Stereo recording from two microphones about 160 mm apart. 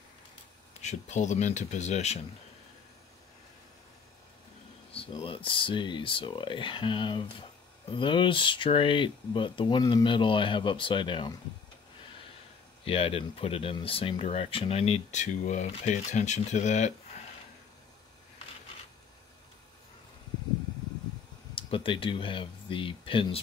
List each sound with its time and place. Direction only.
0.7 s speech: 45° left (ahead or behind)
4.9 s speech: 35° left (ahead or behind)
12.8 s speech: 35° left (ahead or behind)
21.5 s speech: 35° left (ahead or behind)